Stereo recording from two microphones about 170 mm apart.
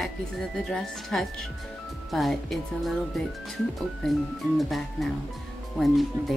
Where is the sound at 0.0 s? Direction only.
5° left (ahead or behind).